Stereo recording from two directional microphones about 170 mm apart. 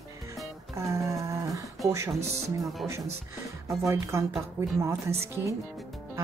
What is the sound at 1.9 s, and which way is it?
Speech, 15° right (ahead or behind).